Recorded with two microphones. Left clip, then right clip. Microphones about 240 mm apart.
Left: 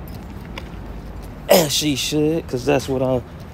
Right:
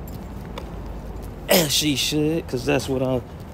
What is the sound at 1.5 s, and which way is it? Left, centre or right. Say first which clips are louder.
Speech: left 4 dB; centre.